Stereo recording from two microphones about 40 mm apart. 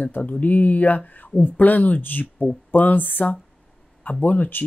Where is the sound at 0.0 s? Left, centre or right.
Left.